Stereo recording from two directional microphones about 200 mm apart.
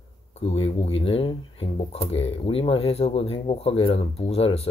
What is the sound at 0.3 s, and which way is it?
Speech, 30° left (ahead or behind).